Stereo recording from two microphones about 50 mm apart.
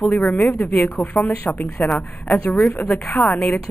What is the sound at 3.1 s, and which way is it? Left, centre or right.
Speech, left.